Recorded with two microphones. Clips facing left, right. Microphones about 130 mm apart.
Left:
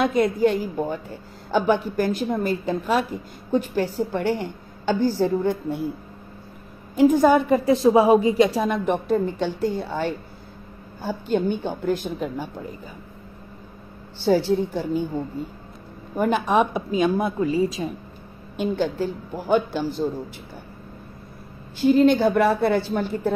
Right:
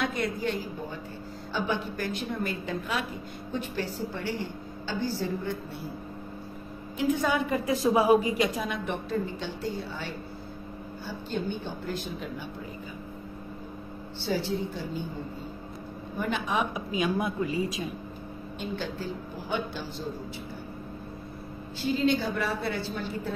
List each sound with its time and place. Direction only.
0.0 s a woman's voice: 45° left (ahead or behind)
7.0 s a woman's voice: 45° left (ahead or behind); by 8.5 s 30° left (ahead or behind)
8.6 s a woman's voice: 45° left (ahead or behind)
14.2 s a woman's voice: 50° left (ahead or behind)
16.2 s a woman's voice: 50° left (ahead or behind)
16.7 s a woman's voice: 30° left (ahead or behind)
18.6 s a woman's voice: 45° left (ahead or behind)
21.8 s a woman's voice: 55° left (ahead or behind)